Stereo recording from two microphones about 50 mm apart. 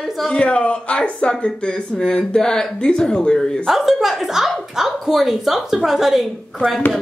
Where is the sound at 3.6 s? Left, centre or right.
Centre.